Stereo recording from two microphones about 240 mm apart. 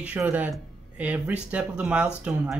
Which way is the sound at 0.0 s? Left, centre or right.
Centre.